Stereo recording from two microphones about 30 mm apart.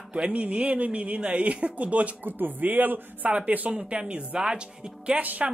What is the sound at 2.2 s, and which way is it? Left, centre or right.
Speech, right.